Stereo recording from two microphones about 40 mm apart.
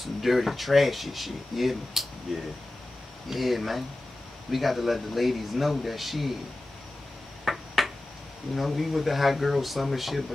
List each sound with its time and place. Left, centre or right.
0.0 s speech: centre
7.4 s a sound: centre
8.5 s speech: centre